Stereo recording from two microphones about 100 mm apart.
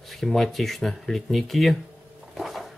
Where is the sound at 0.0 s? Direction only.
Centre (ahead or behind).